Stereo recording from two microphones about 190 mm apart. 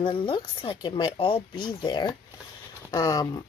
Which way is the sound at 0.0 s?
25° left (ahead or behind).